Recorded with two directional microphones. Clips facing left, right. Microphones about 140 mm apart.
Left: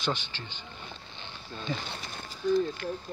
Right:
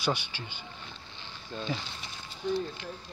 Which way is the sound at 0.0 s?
10° right (ahead or behind).